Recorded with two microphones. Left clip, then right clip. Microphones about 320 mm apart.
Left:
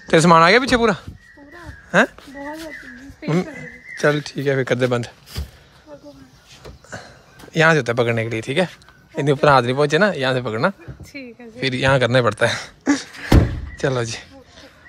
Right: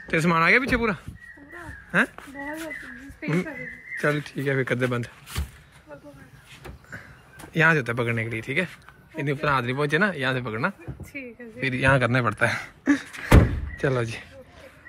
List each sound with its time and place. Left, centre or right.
0.0 s speech: centre
7.5 s speech: centre
11.1 s speech: left
11.6 s speech: centre